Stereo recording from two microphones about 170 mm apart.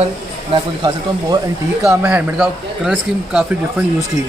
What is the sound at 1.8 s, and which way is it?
Speech, 15° right (ahead or behind).